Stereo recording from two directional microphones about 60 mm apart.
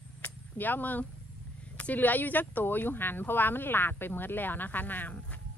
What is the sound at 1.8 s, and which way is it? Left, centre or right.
Speech, left.